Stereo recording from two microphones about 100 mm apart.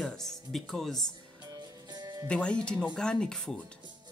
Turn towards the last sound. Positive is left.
turn(degrees=5)  # may be behind; listen again after turning